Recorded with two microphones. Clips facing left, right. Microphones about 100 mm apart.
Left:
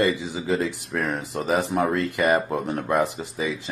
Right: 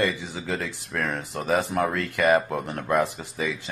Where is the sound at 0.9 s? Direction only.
15° left (ahead or behind).